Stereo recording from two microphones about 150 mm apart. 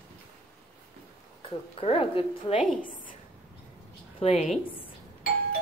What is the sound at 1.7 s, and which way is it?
Speech, 40° left (ahead or behind).